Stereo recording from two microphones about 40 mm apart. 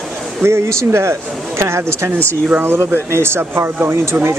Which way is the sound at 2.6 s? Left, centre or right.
Right.